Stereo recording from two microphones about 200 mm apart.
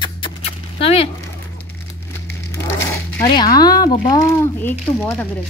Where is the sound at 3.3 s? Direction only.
20° left (ahead or behind).